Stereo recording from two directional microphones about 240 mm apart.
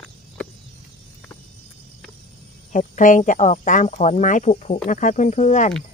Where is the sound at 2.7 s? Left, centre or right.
Left.